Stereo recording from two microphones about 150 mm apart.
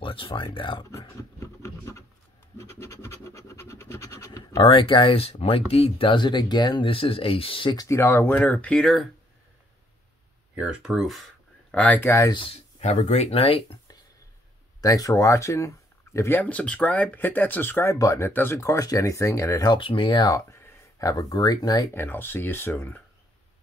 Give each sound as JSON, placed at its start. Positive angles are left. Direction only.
{"t": 0.0, "sound": "speech", "side_deg": 35}
{"t": 0.8, "sound": "a sound", "side_deg": 20}
{"t": 2.5, "sound": "scratch", "side_deg": 20}
{"t": 4.6, "sound": "speech", "side_deg": 35}
{"t": 7.7, "sound": "speech", "side_deg": 20}
{"t": 10.5, "sound": "speech", "side_deg": -5}
{"t": 12.3, "sound": "speech", "side_deg": 35}
{"t": 14.8, "sound": "speech", "side_deg": 25}
{"t": 21.9, "sound": "speech", "side_deg": 15}